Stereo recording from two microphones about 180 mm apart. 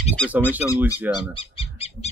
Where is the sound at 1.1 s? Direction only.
30° left (ahead or behind).